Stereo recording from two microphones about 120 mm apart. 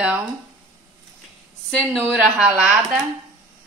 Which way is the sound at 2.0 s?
10° right (ahead or behind).